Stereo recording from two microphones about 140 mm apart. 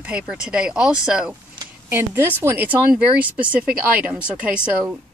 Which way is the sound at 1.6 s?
15° right (ahead or behind).